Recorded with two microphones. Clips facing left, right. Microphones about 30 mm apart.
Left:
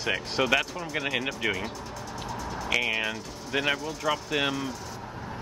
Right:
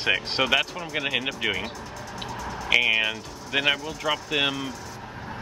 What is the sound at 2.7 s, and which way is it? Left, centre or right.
Speech, centre.